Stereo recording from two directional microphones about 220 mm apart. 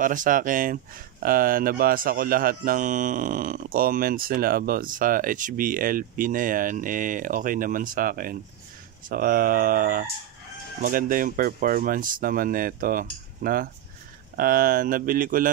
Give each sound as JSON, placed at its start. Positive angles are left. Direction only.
{"t": 0.0, "sound": "speech", "side_deg": -35}